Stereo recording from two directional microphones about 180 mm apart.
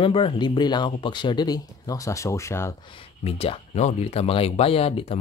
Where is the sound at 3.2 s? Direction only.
35° left (ahead or behind).